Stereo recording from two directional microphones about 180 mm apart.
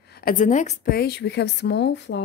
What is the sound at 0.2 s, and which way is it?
Speech, 50° left (ahead or behind).